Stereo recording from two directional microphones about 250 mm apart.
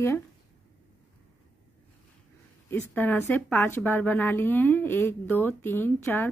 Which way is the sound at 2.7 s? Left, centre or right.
Centre.